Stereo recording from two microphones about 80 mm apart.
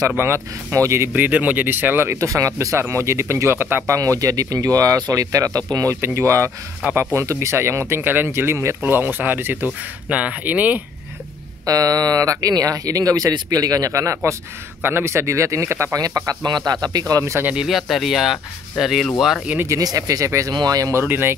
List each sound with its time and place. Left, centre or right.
0.2 s speech: right
3.9 s speech: right
5.9 s speech: right
6.8 s speech: centre
7.2 s speech: right; by 10.8 s centre
11.6 s speech: right
14.8 s speech: right
16.4 s speech: right
17.2 s speech: right
17.6 s speech: centre
19.8 s speech: right
20.5 s speech: right
20.9 s speech: right